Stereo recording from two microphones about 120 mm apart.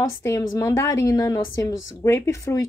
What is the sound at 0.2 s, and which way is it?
A woman's voice, 25° left (ahead or behind).